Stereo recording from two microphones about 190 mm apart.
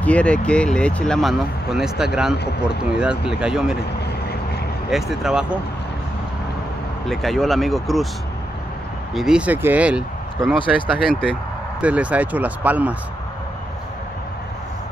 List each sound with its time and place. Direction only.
0.0 s speech: 5° left (ahead or behind)
4.9 s speech: centre (ahead or behind)
7.1 s speech: centre (ahead or behind)
9.1 s speech: 5° right (ahead or behind)